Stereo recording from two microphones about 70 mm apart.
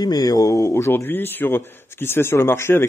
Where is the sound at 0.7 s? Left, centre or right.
Left.